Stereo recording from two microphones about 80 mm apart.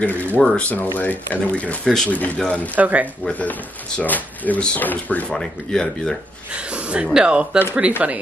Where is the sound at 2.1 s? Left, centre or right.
Centre.